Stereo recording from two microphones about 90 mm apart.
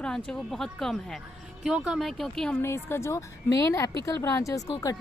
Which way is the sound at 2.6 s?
30° left (ahead or behind).